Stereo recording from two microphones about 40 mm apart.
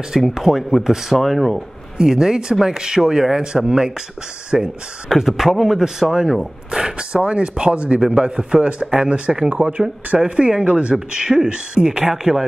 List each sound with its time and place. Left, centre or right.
0.3 s speech: centre
2.0 s speech: centre
5.1 s speech: centre